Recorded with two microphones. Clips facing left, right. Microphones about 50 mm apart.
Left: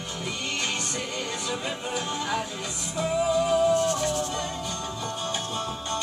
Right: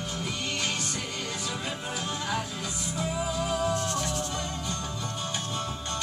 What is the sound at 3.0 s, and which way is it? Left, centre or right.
Music, left.